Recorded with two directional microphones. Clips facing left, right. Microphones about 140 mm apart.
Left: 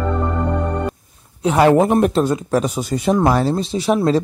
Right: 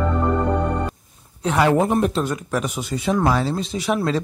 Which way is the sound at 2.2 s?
35° left (ahead or behind).